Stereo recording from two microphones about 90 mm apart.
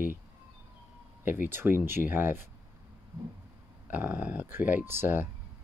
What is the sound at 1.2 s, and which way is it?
Speech, 20° right (ahead or behind).